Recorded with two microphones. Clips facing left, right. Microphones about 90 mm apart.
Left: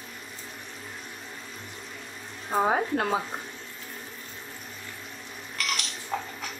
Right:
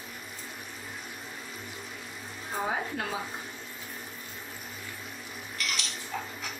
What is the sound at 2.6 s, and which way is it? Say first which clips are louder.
Speech: left 6 dB; 55° left (ahead or behind).